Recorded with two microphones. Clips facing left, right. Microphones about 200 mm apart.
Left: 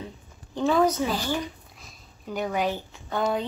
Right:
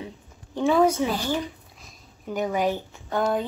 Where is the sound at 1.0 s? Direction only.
20° right (ahead or behind).